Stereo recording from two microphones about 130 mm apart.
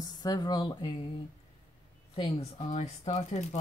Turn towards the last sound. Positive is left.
turn(degrees=60)  # may be behind; listen again after turning